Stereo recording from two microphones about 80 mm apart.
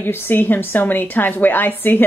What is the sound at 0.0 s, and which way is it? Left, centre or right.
Speech, left.